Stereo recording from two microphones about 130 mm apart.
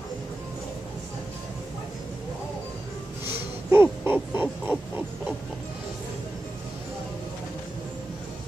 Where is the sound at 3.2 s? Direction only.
15° right (ahead or behind).